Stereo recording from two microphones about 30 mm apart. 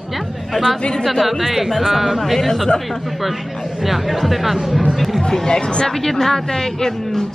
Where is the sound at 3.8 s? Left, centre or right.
Centre.